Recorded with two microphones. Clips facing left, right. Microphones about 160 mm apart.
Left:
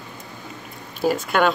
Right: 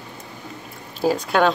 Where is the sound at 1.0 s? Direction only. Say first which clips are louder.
Right 1 dB; 35° right (ahead or behind).